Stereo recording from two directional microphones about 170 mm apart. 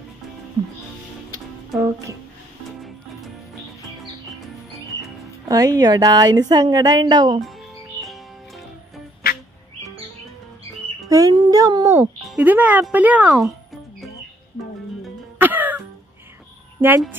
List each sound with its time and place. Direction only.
1.8 s speech: 15° right (ahead or behind)
5.5 s a woman's voice: 20° right (ahead or behind)
9.2 s music: 65° left (ahead or behind)
11.1 s music: 20° right (ahead or behind)
12.0 s speech: 10° right (ahead or behind)
15.3 s music: 10° right (ahead or behind)